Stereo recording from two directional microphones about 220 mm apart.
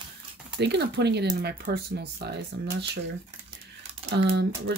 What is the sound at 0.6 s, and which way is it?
Speech, 50° right (ahead or behind).